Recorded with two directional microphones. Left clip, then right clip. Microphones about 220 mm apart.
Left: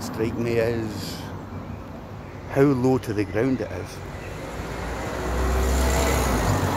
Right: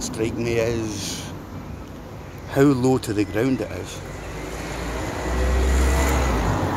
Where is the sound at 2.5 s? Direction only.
Centre (ahead or behind).